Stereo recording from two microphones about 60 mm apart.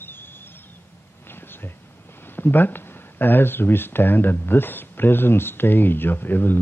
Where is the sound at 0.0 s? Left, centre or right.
Left.